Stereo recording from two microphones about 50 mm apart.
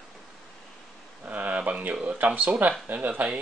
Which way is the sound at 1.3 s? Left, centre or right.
Right.